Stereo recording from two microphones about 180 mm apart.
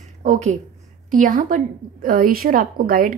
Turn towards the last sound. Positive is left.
turn(degrees=-50)  # may be behind; listen again after turning